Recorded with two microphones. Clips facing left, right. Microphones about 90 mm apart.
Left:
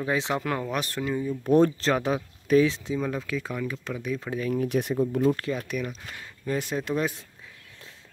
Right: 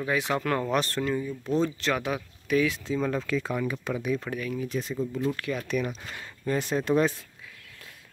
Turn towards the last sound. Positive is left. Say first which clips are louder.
# right 3 dB
turn(degrees=0)  # may be behind; listen again after turning